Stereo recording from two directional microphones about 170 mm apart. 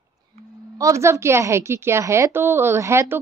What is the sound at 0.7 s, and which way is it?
A woman's voice, 20° right (ahead or behind).